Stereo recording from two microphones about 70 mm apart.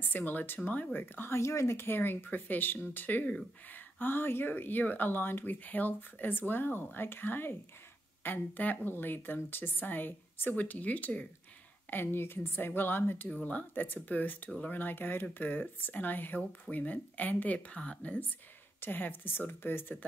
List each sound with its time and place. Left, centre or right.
0.0 s speech: left
11.9 s speech: left
13.3 s speech: centre